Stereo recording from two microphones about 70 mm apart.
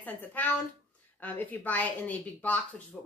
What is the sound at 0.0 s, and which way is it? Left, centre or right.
A woman's voice, left.